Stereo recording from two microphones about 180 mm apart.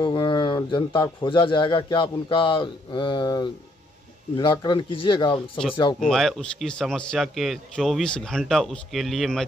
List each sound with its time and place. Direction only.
0.0 s speech: 25° left (ahead or behind)
5.9 s speech: centre (ahead or behind)